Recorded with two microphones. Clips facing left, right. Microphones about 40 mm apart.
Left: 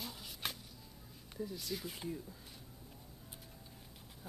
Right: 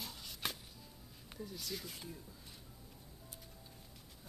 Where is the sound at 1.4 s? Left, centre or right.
Centre.